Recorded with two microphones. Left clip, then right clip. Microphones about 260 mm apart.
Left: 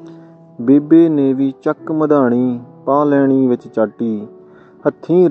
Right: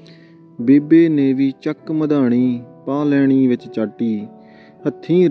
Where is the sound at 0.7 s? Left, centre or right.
Right.